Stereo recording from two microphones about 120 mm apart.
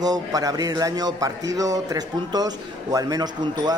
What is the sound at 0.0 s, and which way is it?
A man's voice, 30° right (ahead or behind).